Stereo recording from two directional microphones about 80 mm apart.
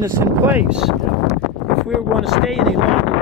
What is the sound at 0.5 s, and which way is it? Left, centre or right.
Speech, centre.